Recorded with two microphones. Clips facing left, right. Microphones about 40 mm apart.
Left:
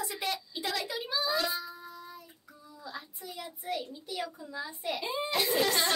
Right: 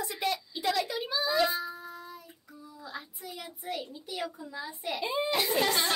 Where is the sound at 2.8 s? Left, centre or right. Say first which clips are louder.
Even; centre.